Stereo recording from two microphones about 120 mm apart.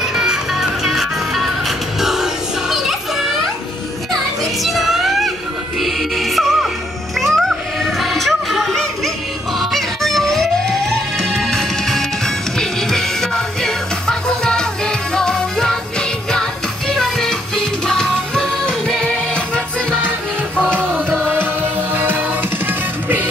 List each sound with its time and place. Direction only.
0.0 s music: 5° right (ahead or behind)
4.1 s children playing: centre (ahead or behind)
5.8 s music: centre (ahead or behind)
20.1 s music: 15° right (ahead or behind)